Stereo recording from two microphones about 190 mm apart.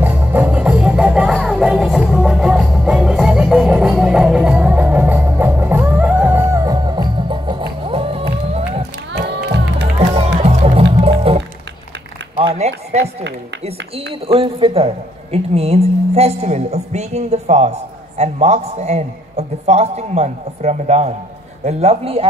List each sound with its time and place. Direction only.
0.0 s music: 10° right (ahead or behind); by 8.8 s 30° right (ahead or behind)
9.1 s music: 60° right (ahead or behind)
9.9 s music: 35° right (ahead or behind)
12.4 s a sound: 35° right (ahead or behind)
14.2 s a sound: 30° right (ahead or behind)
15.3 s a woman's voice: 35° right (ahead or behind)